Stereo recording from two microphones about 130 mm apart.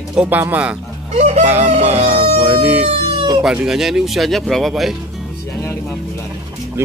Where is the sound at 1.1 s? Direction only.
60° right (ahead or behind).